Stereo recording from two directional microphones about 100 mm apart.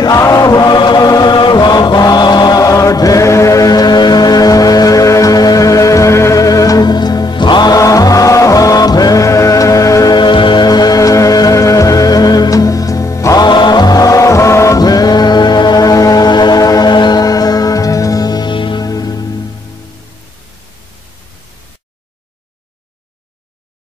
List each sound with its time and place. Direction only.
0.0 s chant: 35° left (ahead or behind)
10.1 s music: 50° left (ahead or behind)
18.9 s music: 40° left (ahead or behind)